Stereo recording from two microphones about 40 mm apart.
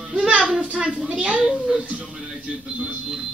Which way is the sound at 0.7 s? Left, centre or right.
Right.